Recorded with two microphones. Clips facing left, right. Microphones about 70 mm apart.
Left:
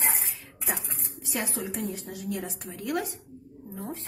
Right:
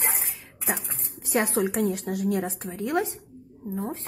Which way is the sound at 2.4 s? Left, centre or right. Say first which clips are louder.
Right 5 dB; right.